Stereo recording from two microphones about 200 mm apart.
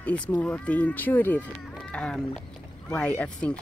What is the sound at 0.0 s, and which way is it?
Speech, 5° left (ahead or behind).